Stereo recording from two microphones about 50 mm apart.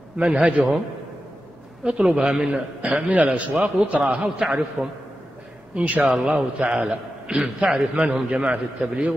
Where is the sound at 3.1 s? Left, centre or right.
Right.